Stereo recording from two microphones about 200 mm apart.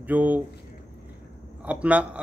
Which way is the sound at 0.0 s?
10° right (ahead or behind).